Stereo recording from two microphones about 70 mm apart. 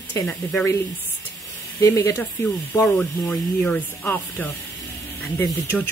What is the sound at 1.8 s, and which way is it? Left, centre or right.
Speech, left.